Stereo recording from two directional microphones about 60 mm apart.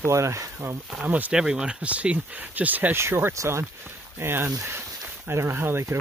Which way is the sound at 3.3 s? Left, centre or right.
Right.